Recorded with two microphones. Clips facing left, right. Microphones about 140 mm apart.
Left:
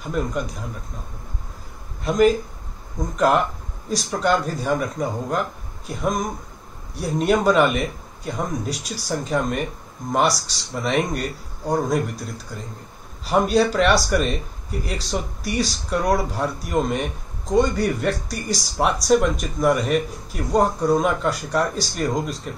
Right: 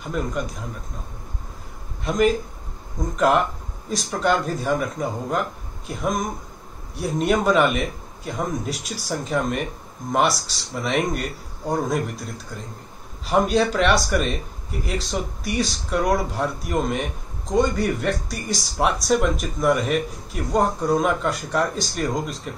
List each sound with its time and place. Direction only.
0.0 s speech: centre (ahead or behind)
2.0 s speech: centre (ahead or behind)